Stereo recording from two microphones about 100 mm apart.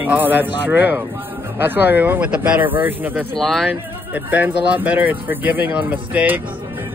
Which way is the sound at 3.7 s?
15° right (ahead or behind).